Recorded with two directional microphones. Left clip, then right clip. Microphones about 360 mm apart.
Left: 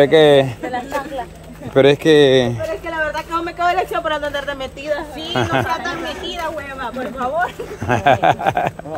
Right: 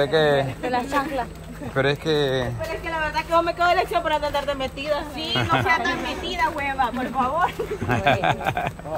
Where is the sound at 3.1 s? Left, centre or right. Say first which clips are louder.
Right 1 dB; centre.